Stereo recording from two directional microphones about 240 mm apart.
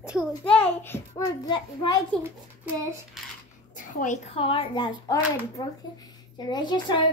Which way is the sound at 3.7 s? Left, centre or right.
Left.